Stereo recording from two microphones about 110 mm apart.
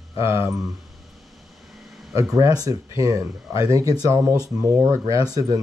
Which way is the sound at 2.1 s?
30° right (ahead or behind).